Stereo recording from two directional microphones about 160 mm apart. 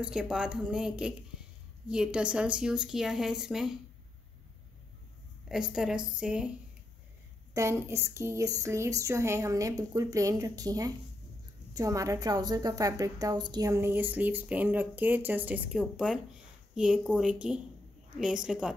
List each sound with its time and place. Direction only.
0.0 s speech: 5° right (ahead or behind)
5.5 s speech: 5° right (ahead or behind)
7.5 s a woman's voice: 15° right (ahead or behind)